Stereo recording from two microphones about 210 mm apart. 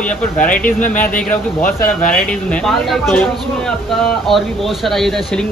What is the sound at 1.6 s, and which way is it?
Speech, 40° left (ahead or behind).